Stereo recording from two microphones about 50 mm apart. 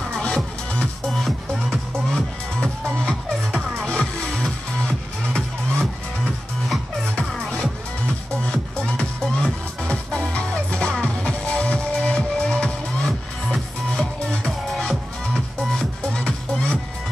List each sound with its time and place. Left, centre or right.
0.1 s music: centre
1.0 s music: centre
9.2 s music: centre
9.8 s music: left